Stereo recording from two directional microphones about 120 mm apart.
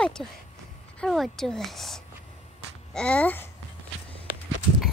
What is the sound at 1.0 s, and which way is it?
A woman's voice, centre (ahead or behind).